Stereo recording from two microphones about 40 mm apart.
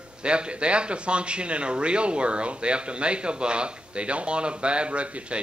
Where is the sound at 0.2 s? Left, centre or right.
Right.